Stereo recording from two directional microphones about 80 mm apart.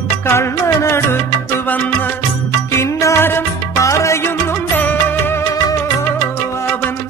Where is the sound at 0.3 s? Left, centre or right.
Left.